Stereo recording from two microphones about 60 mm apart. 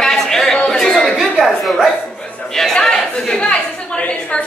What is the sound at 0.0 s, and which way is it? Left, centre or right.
Chatter, centre.